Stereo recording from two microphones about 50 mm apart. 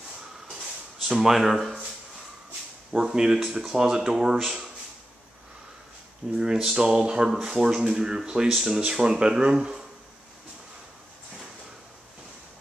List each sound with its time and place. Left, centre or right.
1.0 s speech: centre
2.9 s speech: centre
6.3 s speech: centre